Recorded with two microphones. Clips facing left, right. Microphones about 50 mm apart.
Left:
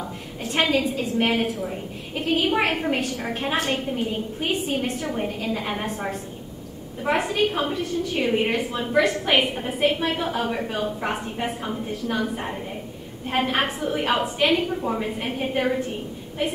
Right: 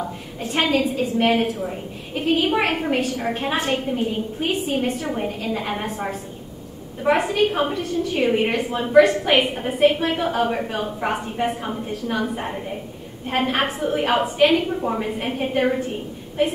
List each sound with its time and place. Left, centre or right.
0.4 s a woman's voice: centre
7.4 s a woman's voice: centre
7.7 s a woman's voice: centre